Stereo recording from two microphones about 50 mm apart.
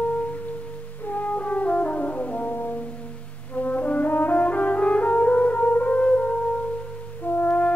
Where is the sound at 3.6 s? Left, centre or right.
Left.